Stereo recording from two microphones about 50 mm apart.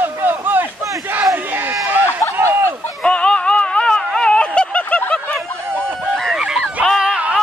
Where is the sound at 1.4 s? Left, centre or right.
Right.